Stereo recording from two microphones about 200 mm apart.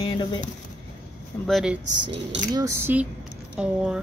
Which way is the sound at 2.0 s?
25° right (ahead or behind).